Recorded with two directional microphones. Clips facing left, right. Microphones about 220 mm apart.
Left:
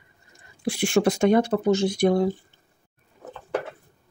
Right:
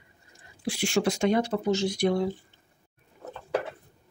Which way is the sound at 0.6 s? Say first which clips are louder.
Left 5 dB; 55° left (ahead or behind).